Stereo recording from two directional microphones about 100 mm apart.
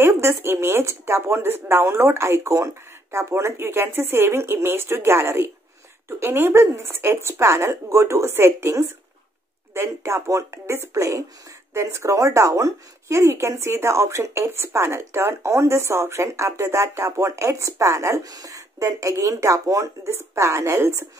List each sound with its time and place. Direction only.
0.0 s speech: 25° right (ahead or behind)